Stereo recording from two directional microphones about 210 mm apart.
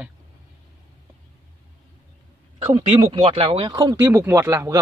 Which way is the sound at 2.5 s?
25° right (ahead or behind).